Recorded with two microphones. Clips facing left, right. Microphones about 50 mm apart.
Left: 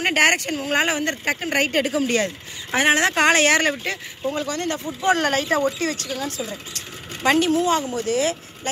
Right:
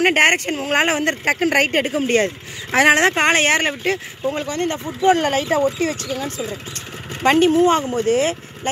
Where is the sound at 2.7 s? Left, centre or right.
Right.